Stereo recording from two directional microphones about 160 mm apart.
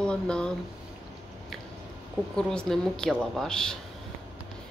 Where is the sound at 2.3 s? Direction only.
5° left (ahead or behind).